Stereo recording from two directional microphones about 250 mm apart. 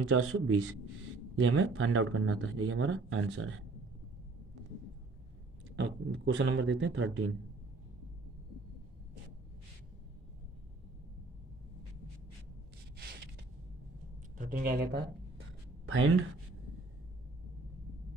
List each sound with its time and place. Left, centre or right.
0.1 s speech: right
5.8 s speech: right
12.9 s zipper: right
14.4 s speech: right
15.8 s speech: right